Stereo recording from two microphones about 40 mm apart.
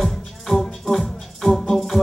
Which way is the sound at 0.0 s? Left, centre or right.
Centre.